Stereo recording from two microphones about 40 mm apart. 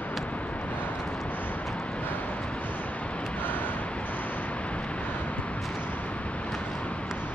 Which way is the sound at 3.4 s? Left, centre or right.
Left.